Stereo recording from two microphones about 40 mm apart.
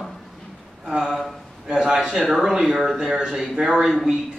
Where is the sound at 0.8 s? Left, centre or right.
Centre.